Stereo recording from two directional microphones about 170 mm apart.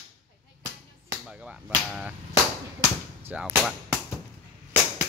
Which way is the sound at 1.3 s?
5° right (ahead or behind).